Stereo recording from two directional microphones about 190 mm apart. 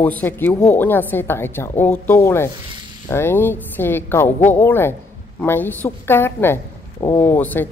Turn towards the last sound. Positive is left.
turn(degrees=10)  # may be behind; listen again after turning